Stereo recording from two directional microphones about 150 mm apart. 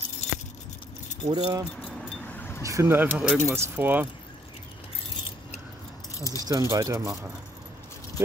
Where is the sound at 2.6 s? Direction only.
20° right (ahead or behind).